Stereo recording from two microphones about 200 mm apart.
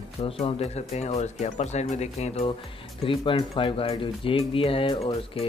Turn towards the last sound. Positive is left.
turn(degrees=30)  # may be behind; listen again after turning